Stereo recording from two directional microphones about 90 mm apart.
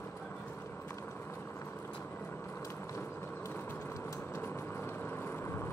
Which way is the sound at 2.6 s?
35° left (ahead or behind).